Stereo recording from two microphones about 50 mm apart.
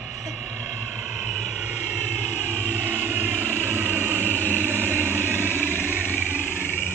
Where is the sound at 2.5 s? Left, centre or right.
Right.